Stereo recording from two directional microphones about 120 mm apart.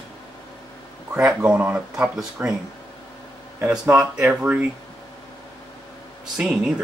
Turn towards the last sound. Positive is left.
turn(degrees=-5)  # may be behind; listen again after turning